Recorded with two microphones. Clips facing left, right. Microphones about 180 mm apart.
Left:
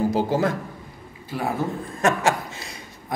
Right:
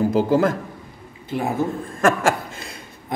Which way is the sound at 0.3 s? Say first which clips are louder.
Right 4 dB; 50° right (ahead or behind).